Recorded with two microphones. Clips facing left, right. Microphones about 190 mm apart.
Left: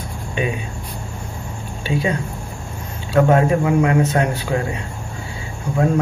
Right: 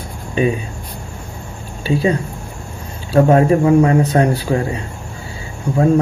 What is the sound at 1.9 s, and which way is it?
Speech, 30° right (ahead or behind).